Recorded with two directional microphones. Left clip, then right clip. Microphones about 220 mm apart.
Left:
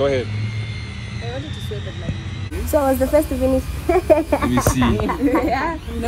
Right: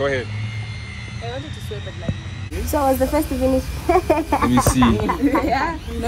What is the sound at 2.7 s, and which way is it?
A woman's voice, 15° right (ahead or behind).